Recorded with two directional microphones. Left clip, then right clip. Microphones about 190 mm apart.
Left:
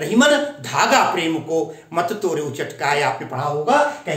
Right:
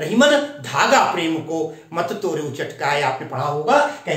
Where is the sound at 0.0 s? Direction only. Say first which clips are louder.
Even; 20° left (ahead or behind).